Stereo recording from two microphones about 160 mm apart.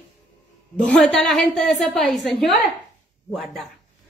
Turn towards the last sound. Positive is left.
turn(degrees=0)  # may be behind; listen again after turning